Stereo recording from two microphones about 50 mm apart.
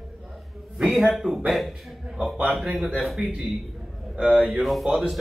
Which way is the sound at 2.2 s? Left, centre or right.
Right.